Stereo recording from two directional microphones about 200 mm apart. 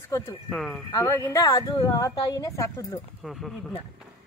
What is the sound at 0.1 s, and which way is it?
Speech, 15° left (ahead or behind).